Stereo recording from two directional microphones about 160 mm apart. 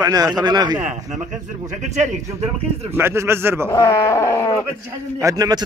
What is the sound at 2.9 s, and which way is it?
Speech, 15° right (ahead or behind).